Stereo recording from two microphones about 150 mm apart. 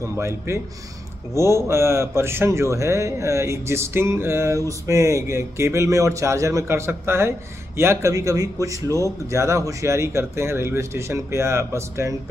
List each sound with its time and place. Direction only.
0.2 s a man's voice: 20° right (ahead or behind)